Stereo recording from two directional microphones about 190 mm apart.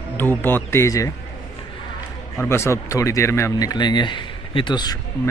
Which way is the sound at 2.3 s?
15° left (ahead or behind).